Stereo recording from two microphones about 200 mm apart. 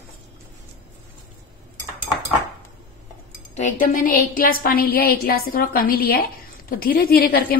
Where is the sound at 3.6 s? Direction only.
40° left (ahead or behind).